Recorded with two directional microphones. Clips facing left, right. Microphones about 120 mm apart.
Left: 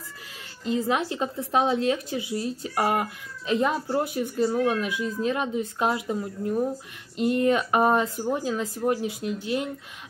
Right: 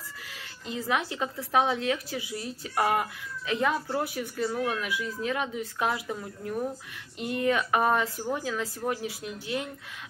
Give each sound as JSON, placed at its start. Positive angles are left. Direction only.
{"t": 0.7, "sound": "a woman's voice", "side_deg": 25}